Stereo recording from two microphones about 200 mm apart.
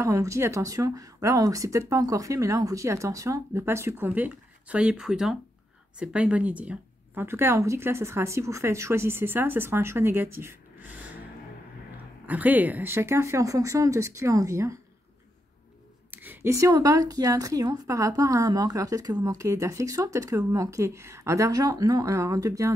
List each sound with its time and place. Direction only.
0.0 s speech: 15° right (ahead or behind)
12.3 s speech: 10° right (ahead or behind)
16.1 s speech: 10° right (ahead or behind)